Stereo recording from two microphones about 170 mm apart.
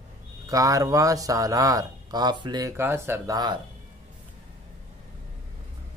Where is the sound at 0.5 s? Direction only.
20° right (ahead or behind).